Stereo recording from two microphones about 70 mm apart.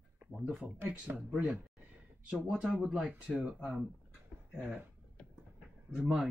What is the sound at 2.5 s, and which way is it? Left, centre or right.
Speech, centre.